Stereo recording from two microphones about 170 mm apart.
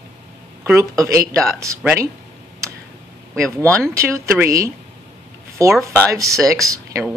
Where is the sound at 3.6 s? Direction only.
20° right (ahead or behind).